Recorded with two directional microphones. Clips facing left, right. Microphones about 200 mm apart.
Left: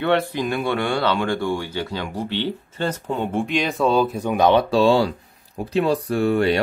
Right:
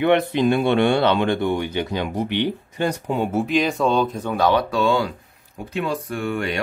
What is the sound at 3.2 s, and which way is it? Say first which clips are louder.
Speech: right 3 dB; 5° right (ahead or behind).